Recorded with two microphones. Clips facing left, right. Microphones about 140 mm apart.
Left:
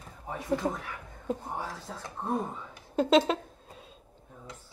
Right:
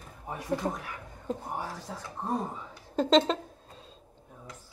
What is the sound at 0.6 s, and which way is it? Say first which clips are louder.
Speech: left 1 dB; centre (ahead or behind).